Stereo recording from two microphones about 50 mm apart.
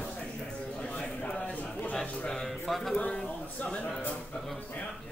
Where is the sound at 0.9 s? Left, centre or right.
Left.